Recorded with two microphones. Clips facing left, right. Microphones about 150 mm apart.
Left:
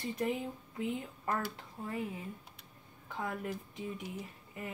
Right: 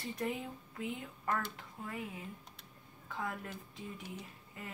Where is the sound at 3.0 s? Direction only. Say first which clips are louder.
Left 3 dB; 20° left (ahead or behind).